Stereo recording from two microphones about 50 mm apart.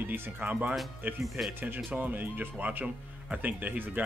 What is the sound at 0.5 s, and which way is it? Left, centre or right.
Speech, right.